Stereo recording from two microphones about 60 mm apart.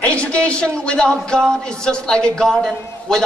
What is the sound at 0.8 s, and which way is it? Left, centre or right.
A man's voice, centre.